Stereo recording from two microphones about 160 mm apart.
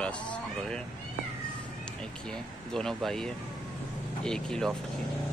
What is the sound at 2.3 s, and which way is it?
Speech, 5° left (ahead or behind).